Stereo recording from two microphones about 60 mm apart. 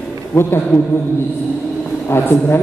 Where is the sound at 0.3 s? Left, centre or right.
Left.